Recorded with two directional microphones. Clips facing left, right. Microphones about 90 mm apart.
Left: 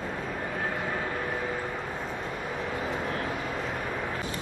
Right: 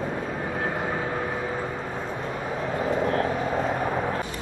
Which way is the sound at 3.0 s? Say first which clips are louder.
Right 7 dB; 40° right (ahead or behind).